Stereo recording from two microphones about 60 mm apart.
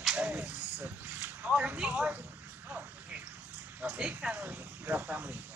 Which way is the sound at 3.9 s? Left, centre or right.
Centre.